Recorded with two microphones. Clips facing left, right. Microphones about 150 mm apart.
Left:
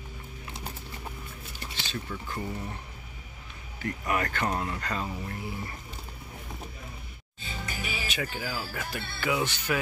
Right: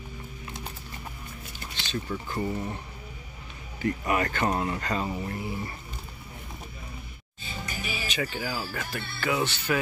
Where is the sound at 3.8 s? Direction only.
5° right (ahead or behind).